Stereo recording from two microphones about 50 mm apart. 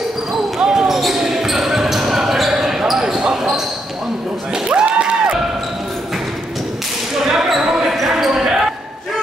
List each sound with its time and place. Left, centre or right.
0.6 s basketball bounce: centre
4.6 s a sound: right
7.2 s basketball bounce: centre